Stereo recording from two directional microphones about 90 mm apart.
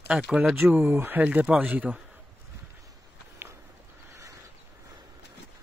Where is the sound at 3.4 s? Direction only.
25° right (ahead or behind).